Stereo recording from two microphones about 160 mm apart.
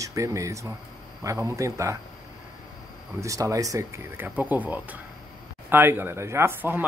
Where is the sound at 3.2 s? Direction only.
20° right (ahead or behind).